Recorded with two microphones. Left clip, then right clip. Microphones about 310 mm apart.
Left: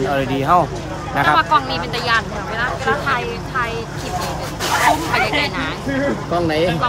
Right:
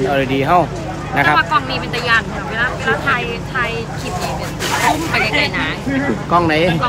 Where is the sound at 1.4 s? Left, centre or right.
Left.